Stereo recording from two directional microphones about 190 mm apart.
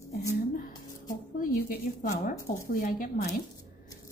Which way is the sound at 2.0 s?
45° left (ahead or behind).